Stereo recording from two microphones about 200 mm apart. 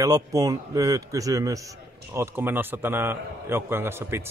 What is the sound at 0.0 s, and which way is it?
A man's voice, 15° right (ahead or behind).